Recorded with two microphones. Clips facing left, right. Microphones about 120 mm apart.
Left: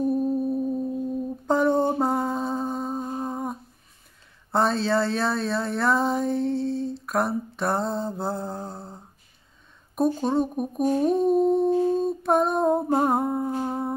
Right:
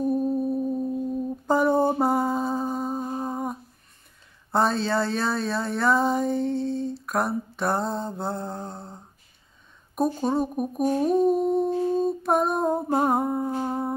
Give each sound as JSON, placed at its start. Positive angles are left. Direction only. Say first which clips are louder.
{"t": 0.0, "sound": "music", "louder": "even", "side_deg": 0}
{"t": 1.5, "sound": "humming", "louder": "even", "side_deg": -5}
{"t": 4.5, "sound": "a sound", "louder": "left 1 dB", "side_deg": 0}